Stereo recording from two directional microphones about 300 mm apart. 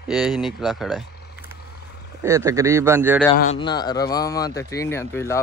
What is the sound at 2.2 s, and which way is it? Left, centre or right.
Speech, centre.